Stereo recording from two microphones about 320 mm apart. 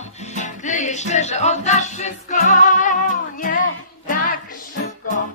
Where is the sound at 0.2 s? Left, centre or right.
Left.